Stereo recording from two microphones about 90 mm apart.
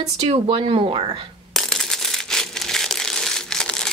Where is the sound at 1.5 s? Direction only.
Centre (ahead or behind).